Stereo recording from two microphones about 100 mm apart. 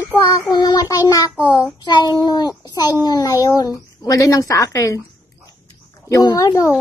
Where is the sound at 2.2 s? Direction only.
45° left (ahead or behind).